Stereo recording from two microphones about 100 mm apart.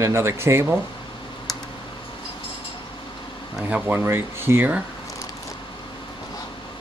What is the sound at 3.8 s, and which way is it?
Speech, 25° right (ahead or behind).